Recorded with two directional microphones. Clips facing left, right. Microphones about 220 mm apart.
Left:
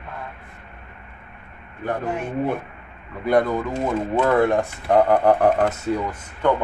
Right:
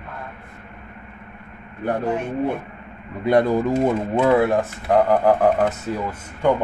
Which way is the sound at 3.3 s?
30° right (ahead or behind).